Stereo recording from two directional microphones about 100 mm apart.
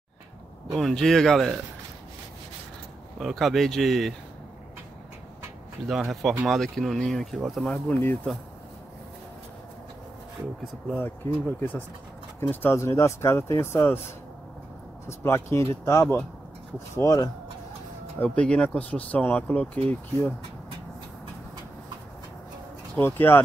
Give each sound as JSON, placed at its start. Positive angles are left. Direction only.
{"t": 0.7, "sound": "speech", "side_deg": 5}
{"t": 3.2, "sound": "speech", "side_deg": 0}
{"t": 5.9, "sound": "speech", "side_deg": 0}
{"t": 11.4, "sound": "speech", "side_deg": 15}
{"t": 15.0, "sound": "speech", "side_deg": 30}
{"t": 18.2, "sound": "speech", "side_deg": 10}
{"t": 22.9, "sound": "speech", "side_deg": 20}